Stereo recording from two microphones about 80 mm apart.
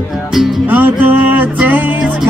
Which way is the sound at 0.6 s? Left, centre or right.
Right.